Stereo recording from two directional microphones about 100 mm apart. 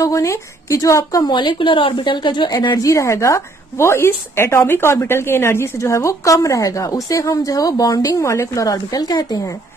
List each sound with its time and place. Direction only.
0.0 s a woman's voice: 30° left (ahead or behind)
1.3 s a woman's voice: 55° left (ahead or behind); by 9.6 s 35° left (ahead or behind)